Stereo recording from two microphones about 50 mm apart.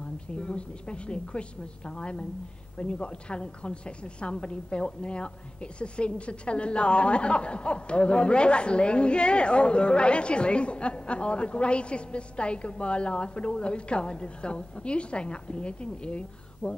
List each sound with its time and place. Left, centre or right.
0.0 s a woman's voice: left